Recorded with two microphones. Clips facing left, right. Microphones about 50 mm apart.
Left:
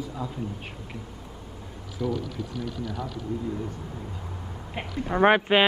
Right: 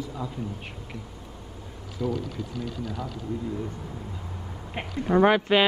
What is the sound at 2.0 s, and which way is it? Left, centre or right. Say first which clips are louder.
Speech: even; left.